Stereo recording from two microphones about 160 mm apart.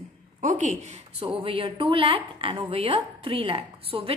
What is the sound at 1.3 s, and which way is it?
Speech, 35° right (ahead or behind).